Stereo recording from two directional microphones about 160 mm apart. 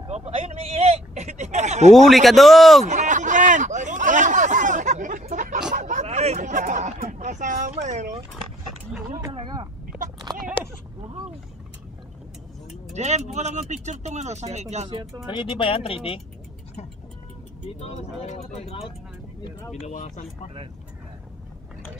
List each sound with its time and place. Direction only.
0.0 s a sound: 40° right (ahead or behind)
2.0 s a man's voice: centre (ahead or behind)
2.9 s a sound: 50° right (ahead or behind)
8.9 s speech: 10° right (ahead or behind)
9.3 s speech: 30° right (ahead or behind)
10.3 s a sound: 25° right (ahead or behind)
12.9 s speech: 45° right (ahead or behind)
15.2 s speech: 30° left (ahead or behind)
17.7 s speech: 40° left (ahead or behind)
19.7 s speech: 50° left (ahead or behind)